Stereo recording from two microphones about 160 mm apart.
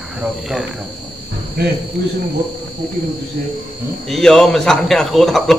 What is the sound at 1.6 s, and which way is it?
Speech, 75° right (ahead or behind).